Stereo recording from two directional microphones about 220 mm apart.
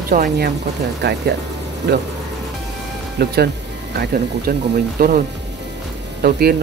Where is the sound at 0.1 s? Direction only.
40° right (ahead or behind).